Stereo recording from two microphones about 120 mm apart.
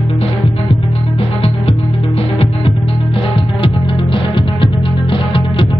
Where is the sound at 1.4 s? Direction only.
55° left (ahead or behind).